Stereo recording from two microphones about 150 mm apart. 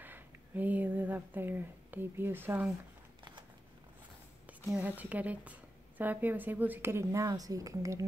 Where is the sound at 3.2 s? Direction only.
30° right (ahead or behind).